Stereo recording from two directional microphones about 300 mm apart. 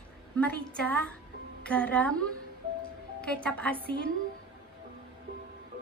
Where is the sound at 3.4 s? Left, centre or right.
Centre.